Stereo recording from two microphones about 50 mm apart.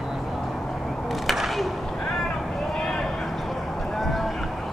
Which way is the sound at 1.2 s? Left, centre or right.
Centre.